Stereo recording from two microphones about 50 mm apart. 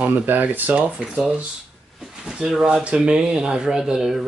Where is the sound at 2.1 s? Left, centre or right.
Centre.